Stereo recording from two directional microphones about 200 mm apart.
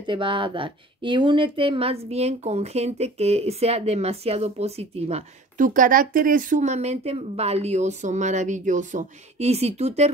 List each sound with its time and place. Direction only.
0.0 s speech: 25° right (ahead or behind)